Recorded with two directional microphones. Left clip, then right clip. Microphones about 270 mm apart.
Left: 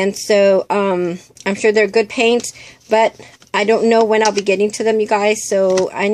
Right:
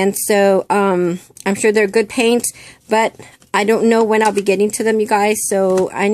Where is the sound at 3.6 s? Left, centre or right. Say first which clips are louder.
Left 2 dB; centre.